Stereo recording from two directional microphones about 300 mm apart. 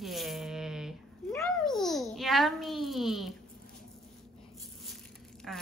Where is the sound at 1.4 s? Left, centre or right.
Centre.